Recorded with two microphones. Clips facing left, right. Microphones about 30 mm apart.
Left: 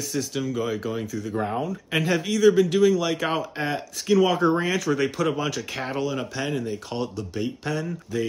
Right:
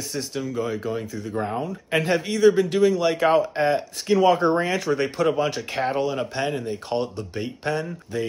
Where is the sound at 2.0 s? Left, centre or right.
Right.